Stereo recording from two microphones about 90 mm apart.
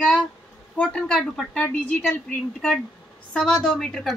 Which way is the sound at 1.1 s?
5° left (ahead or behind).